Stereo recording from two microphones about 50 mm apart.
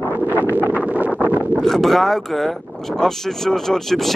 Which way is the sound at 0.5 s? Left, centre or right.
Right.